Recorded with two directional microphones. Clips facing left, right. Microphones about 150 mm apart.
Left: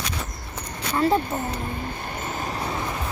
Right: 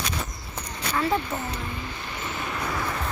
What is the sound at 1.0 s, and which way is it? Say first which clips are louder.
Vehicle: left 4 dB; 40° left (ahead or behind).